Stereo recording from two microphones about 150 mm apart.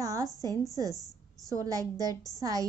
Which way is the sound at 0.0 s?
20° right (ahead or behind).